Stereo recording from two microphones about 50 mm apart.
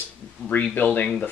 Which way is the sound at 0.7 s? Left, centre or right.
Left.